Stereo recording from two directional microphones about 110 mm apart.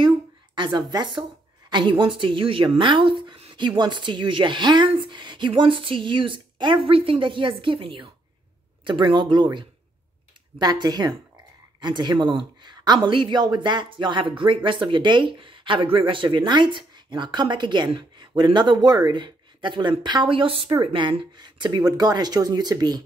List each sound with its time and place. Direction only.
0.7 s speech: 40° right (ahead or behind)